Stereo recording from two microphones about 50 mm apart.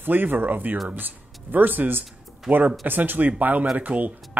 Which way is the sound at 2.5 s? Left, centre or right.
Centre.